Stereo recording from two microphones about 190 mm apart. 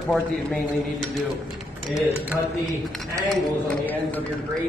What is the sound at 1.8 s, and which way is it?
Speech, 15° left (ahead or behind).